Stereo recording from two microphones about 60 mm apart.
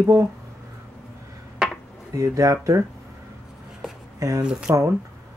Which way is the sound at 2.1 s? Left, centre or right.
Right.